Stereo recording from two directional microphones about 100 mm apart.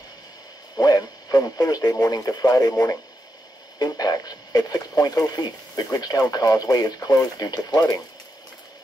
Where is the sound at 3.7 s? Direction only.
40° left (ahead or behind).